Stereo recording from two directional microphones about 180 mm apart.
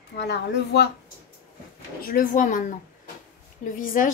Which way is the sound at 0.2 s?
70° left (ahead or behind).